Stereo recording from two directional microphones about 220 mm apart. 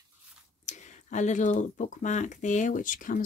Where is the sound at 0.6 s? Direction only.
30° left (ahead or behind).